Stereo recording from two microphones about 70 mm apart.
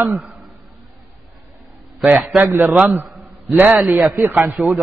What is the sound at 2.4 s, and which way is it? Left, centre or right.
Speech, right.